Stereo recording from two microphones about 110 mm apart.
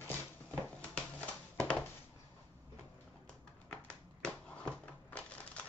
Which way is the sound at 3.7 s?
10° left (ahead or behind).